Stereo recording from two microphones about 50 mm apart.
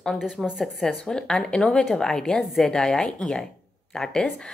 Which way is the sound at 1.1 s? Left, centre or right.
Centre.